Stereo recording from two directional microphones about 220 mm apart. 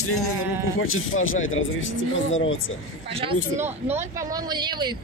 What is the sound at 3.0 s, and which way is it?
Speech, 25° right (ahead or behind).